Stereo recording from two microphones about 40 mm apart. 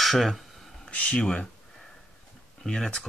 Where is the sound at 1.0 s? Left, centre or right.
Left.